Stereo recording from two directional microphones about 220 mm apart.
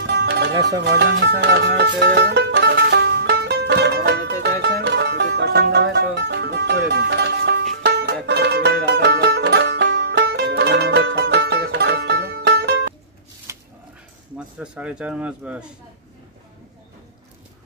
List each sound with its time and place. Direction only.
0.0 s music: 50° right (ahead or behind)
13.5 s dog: 10° right (ahead or behind)
14.6 s speech: 5° right (ahead or behind)